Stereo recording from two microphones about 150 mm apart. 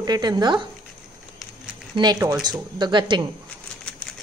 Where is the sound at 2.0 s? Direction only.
25° right (ahead or behind).